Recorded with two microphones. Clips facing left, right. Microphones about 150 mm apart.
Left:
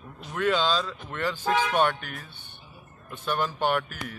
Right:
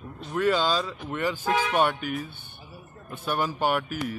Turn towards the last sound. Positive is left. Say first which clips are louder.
# right 1 dB
turn(degrees=-5)  # may be behind; listen again after turning